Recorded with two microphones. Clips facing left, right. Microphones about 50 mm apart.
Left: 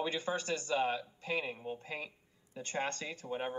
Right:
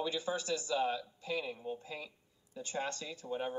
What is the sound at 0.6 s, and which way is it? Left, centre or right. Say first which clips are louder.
A man's voice: left 2 dB; left.